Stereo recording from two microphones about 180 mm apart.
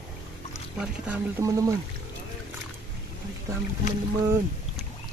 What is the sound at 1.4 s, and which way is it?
Speech, 20° right (ahead or behind).